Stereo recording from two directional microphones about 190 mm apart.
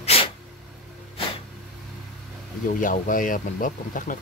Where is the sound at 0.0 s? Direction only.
30° left (ahead or behind).